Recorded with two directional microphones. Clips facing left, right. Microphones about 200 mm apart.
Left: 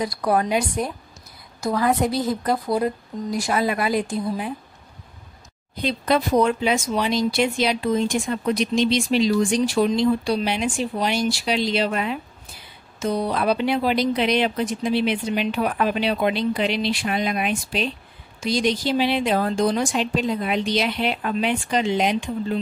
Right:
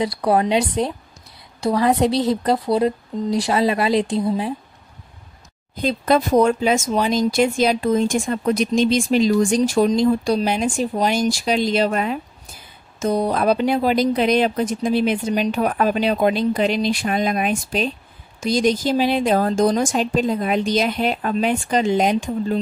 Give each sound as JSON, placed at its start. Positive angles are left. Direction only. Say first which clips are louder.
{"t": 0.0, "sound": "a woman's voice", "louder": "right 3 dB", "side_deg": -25}
{"t": 2.0, "sound": "speech", "louder": "right 4 dB", "side_deg": -80}
{"t": 2.4, "sound": "a woman's voice", "louder": "right 4 dB", "side_deg": -35}
{"t": 5.8, "sound": "speech", "louder": "right 3 dB", "side_deg": -45}